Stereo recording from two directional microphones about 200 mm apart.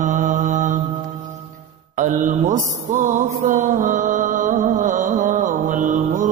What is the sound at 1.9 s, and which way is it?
Mantra, 40° right (ahead or behind).